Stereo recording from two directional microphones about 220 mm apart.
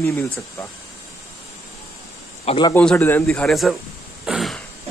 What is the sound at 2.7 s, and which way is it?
Speech, 5° left (ahead or behind).